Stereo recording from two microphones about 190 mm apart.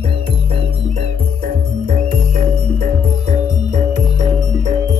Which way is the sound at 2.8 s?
45° right (ahead or behind).